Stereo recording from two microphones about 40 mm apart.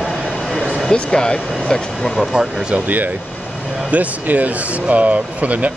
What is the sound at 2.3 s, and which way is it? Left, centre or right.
Speech, right.